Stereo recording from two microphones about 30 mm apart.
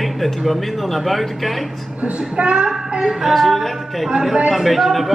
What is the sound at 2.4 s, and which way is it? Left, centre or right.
Speech, right.